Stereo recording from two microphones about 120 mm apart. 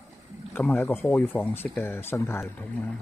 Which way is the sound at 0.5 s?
20° left (ahead or behind).